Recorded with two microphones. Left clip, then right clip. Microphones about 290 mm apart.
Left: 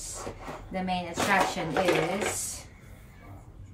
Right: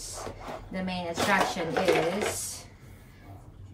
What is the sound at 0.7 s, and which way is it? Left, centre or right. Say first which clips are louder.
Speech: left 2 dB; centre.